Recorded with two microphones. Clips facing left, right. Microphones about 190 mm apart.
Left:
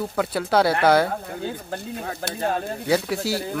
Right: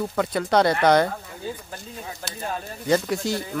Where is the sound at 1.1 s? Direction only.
65° left (ahead or behind).